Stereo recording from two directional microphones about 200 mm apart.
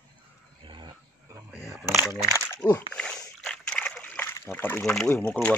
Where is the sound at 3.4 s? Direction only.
5° left (ahead or behind).